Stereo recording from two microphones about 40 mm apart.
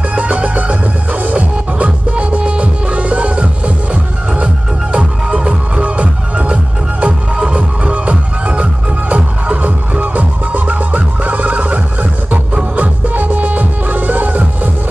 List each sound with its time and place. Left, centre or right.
0.1 s music: right